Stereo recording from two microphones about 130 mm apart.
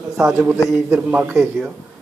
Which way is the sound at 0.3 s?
20° right (ahead or behind).